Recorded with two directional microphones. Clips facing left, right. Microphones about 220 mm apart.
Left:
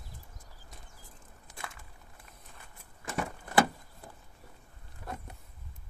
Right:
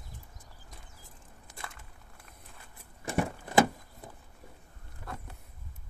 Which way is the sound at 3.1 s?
20° right (ahead or behind).